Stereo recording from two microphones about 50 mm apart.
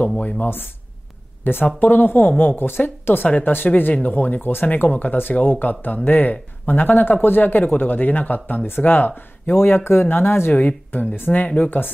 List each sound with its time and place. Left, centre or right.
1.4 s speech: left
4.6 s speech: left
10.9 s speech: left